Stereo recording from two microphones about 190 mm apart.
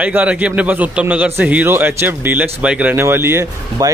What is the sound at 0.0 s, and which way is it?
A man's voice, 5° right (ahead or behind).